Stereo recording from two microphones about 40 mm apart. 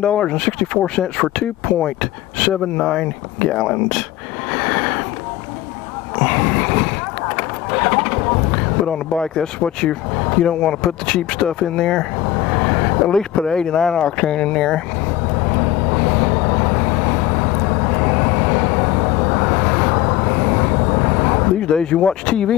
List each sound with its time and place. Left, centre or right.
0.0 s speech: centre
4.5 s train: centre
6.1 s speech: centre
15.3 s vehicle: centre